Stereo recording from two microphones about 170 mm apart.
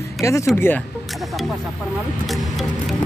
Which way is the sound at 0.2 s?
20° left (ahead or behind).